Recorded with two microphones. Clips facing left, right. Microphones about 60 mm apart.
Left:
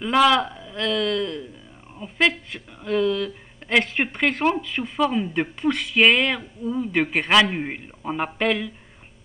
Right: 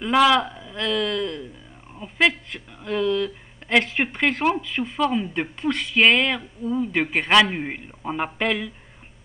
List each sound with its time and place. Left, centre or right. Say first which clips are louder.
0.0 s speech: even; centre